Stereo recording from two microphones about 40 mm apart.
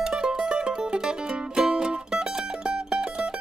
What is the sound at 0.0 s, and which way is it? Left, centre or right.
Music, centre.